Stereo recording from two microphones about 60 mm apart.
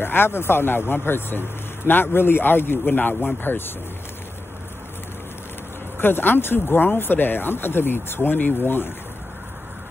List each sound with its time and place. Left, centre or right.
0.0 s speech: left
5.9 s speech: left